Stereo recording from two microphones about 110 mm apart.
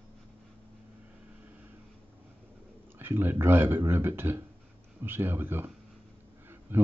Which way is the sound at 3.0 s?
20° right (ahead or behind).